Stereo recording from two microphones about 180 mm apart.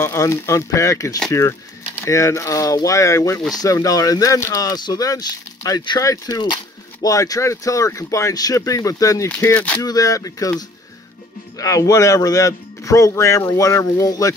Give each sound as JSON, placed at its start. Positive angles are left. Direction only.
{"t": 0.0, "sound": "speech", "side_deg": 15}
{"t": 9.4, "sound": "speech", "side_deg": 10}
{"t": 9.8, "sound": "speech", "side_deg": 20}
{"t": 11.5, "sound": "speech", "side_deg": 20}